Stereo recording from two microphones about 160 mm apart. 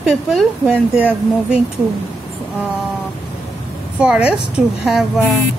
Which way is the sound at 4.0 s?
5° right (ahead or behind).